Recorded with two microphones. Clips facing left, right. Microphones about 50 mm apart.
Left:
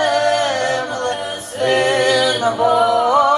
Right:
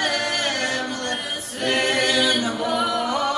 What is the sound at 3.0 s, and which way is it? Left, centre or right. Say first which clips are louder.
Music: left 10 dB; left.